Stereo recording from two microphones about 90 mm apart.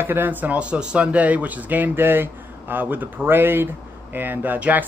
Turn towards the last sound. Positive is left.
turn(degrees=-20)  # may be behind; listen again after turning